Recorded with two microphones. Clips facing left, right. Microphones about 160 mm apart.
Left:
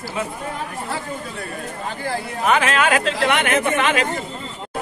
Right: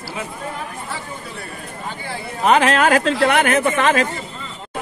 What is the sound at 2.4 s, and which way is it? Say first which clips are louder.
Speech: right 4 dB; 35° right (ahead or behind).